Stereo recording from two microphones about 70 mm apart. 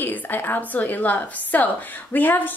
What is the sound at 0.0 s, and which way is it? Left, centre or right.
A woman's voice, left.